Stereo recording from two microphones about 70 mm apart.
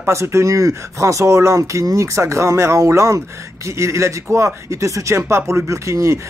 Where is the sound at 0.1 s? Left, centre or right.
Right.